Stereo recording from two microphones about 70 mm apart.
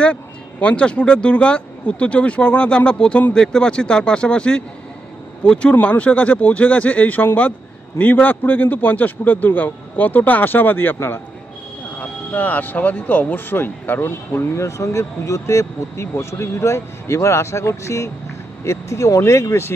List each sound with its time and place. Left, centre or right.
0.0 s a man's voice: centre
14.5 s speech: left